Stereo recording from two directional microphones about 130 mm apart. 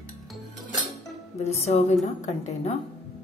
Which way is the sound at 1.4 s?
55° left (ahead or behind).